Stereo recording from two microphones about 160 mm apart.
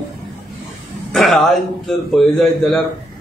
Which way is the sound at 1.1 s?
Centre (ahead or behind).